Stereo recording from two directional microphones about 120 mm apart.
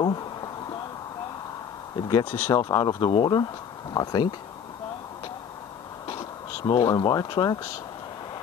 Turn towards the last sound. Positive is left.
turn(degrees=35)  # may be behind; listen again after turning